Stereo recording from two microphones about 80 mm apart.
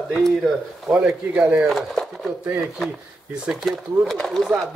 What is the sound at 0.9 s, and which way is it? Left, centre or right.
Speech, centre.